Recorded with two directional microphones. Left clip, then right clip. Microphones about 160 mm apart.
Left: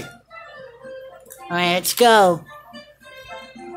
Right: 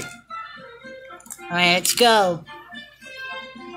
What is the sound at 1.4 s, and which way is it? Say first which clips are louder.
Speech: right 1 dB; 5° left (ahead or behind).